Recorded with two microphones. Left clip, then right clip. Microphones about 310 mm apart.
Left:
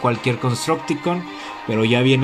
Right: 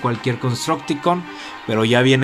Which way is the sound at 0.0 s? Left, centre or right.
Centre.